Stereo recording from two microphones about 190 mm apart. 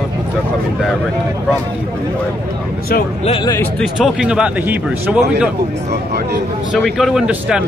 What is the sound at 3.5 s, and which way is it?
A man's voice, 5° left (ahead or behind).